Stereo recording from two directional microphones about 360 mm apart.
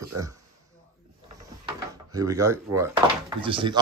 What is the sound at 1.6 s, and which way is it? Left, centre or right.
Speech, centre.